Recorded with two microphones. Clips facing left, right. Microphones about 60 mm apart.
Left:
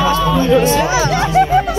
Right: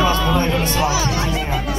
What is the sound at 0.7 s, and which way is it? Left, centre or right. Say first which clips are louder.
Speech: left 5 dB; left.